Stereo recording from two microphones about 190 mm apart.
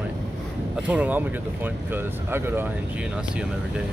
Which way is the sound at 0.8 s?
5° right (ahead or behind).